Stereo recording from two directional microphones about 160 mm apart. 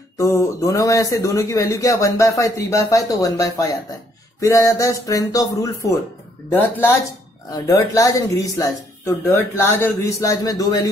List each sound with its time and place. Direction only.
0.2 s a man's voice: 20° left (ahead or behind)